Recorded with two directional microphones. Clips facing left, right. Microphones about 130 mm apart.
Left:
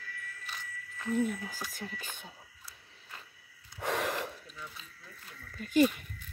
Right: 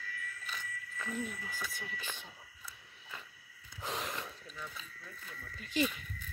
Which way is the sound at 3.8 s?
65° left (ahead or behind).